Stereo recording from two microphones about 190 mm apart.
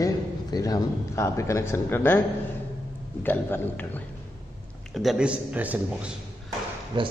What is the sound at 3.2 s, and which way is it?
Speech, 10° left (ahead or behind).